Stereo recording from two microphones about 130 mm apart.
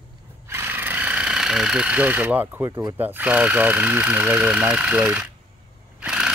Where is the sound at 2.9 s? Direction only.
15° right (ahead or behind).